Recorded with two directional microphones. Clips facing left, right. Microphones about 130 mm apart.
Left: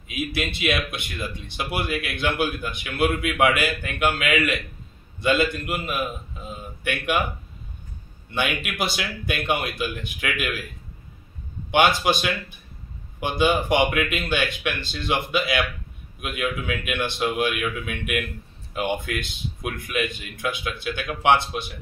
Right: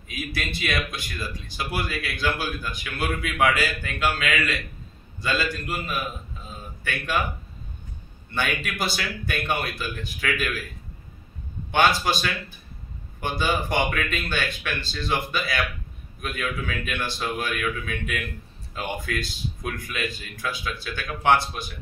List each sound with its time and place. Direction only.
0.1 s speech: 20° left (ahead or behind)
8.6 s speech: 20° left (ahead or behind)
11.7 s speech: 15° left (ahead or behind)
13.2 s speech: 15° left (ahead or behind)